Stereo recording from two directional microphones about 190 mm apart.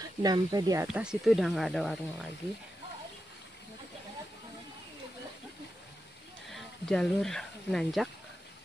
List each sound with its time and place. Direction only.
0.2 s speech: 20° right (ahead or behind)
0.8 s speech: 5° right (ahead or behind)
6.5 s speech: centre (ahead or behind)